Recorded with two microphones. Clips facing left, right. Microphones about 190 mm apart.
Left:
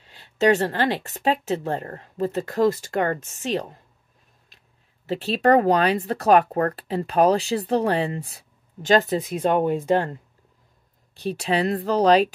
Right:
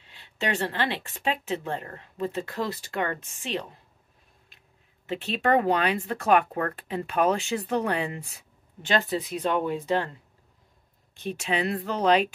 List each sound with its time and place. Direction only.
0.0 s speech: 40° left (ahead or behind)
5.0 s speech: 35° left (ahead or behind)
11.1 s speech: 35° left (ahead or behind)